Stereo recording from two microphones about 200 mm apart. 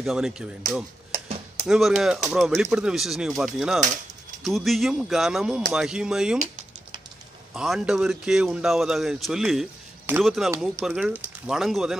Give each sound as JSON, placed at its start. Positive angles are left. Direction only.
{"t": 0.0, "sound": "speech", "side_deg": 0}
{"t": 1.1, "sound": "a sound", "side_deg": -35}
{"t": 1.7, "sound": "speech", "side_deg": 0}
{"t": 7.5, "sound": "speech", "side_deg": 0}